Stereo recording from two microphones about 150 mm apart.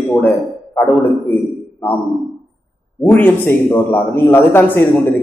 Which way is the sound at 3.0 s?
15° left (ahead or behind).